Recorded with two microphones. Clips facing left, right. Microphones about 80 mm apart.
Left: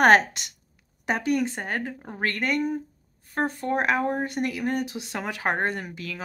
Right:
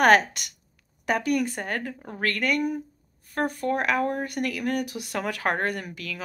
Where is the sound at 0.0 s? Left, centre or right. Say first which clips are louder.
Left 1 dB; left.